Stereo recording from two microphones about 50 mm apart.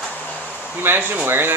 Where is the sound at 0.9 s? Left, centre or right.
Right.